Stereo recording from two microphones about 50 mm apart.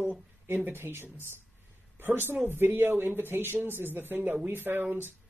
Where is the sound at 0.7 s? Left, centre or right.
Right.